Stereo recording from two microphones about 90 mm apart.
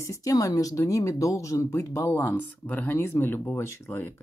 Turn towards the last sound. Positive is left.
turn(degrees=25)  # may be behind; listen again after turning